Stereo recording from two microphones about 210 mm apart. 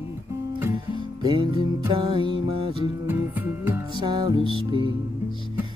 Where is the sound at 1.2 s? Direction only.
20° right (ahead or behind).